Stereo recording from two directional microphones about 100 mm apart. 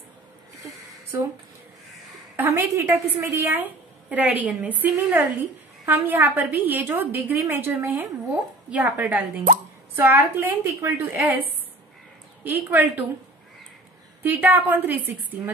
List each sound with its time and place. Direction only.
2.3 s a woman's voice: 20° right (ahead or behind)
14.2 s a woman's voice: 20° right (ahead or behind)